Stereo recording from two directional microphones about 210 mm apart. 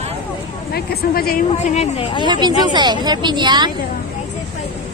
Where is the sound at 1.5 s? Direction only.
30° left (ahead or behind).